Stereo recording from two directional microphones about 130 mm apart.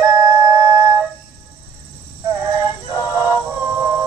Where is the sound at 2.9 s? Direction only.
10° right (ahead or behind).